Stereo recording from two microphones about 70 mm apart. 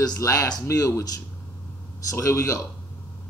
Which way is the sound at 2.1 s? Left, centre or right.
Left.